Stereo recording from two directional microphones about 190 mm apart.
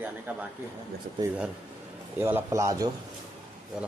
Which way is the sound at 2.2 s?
15° right (ahead or behind).